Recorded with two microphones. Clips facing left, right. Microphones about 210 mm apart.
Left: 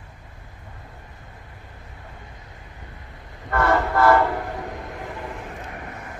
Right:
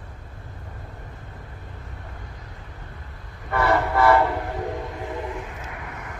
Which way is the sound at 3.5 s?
5° right (ahead or behind).